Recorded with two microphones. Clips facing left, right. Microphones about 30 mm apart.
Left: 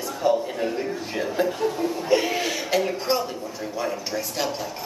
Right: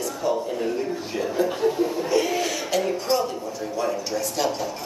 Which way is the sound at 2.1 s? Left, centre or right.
Centre.